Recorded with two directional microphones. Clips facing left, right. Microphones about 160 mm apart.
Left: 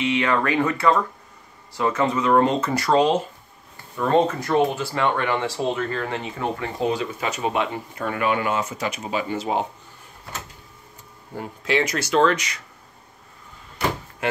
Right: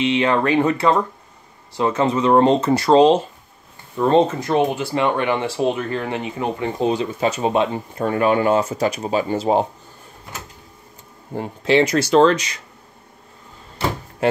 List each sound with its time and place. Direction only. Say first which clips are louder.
0.0 s speech: right 4 dB; 25° right (ahead or behind)
11.3 s speech: right 6 dB; 30° right (ahead or behind)